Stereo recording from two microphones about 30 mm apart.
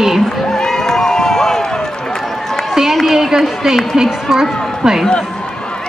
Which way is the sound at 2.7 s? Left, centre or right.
Centre.